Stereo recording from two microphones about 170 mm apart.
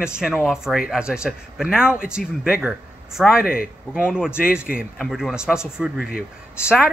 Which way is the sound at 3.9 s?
5° right (ahead or behind).